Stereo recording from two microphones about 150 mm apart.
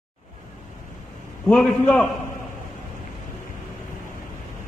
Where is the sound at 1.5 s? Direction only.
10° left (ahead or behind).